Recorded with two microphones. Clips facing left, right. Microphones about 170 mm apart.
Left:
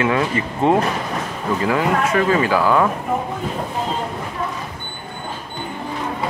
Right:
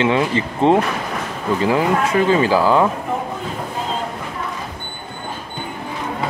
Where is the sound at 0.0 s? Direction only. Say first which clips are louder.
Right 2 dB; 25° right (ahead or behind).